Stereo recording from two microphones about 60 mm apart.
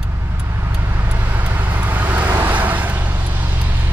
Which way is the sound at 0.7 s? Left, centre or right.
Right.